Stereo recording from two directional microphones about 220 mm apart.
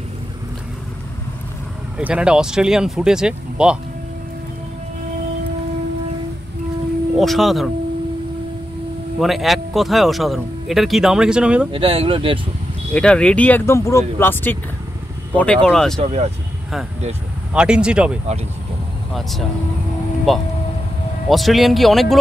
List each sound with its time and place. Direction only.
2.0 s speech: 5° right (ahead or behind)
7.2 s speech: centre (ahead or behind)
9.2 s speech: centre (ahead or behind)
11.7 s speech: 25° right (ahead or behind)
12.9 s speech: 5° left (ahead or behind)
16.0 s speech: 30° right (ahead or behind)
17.6 s speech: 5° right (ahead or behind)
21.3 s speech: centre (ahead or behind)